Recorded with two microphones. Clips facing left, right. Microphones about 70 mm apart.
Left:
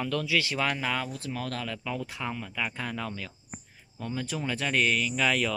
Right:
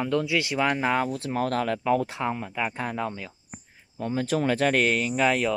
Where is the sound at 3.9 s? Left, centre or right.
Right.